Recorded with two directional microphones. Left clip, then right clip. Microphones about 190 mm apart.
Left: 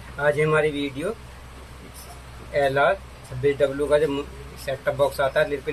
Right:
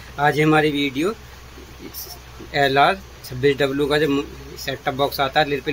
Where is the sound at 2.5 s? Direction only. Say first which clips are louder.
Right 4 dB; 50° right (ahead or behind).